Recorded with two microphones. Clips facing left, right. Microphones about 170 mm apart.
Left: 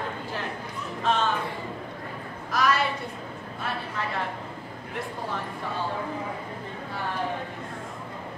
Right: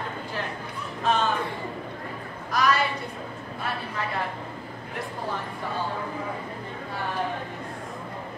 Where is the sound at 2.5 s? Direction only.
Centre (ahead or behind).